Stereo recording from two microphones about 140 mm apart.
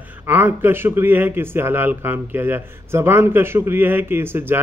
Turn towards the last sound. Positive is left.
turn(degrees=-15)  # may be behind; listen again after turning